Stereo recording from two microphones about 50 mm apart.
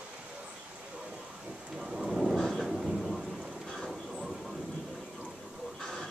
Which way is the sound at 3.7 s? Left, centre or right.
Centre.